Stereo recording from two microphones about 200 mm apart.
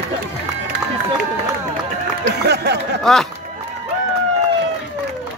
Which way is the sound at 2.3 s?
55° right (ahead or behind).